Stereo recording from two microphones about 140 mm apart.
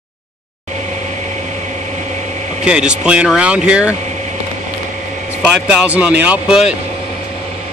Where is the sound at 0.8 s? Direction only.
60° right (ahead or behind).